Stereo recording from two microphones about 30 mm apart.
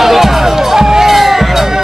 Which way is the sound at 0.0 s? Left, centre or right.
Centre.